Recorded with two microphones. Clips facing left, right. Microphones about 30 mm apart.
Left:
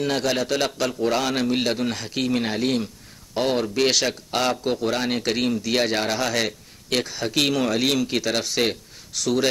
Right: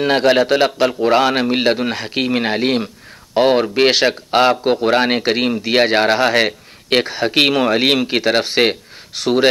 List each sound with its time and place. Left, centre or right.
0.0 s a man's voice: right